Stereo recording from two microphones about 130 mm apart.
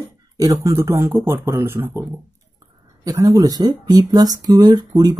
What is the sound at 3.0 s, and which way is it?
Speech, 25° right (ahead or behind).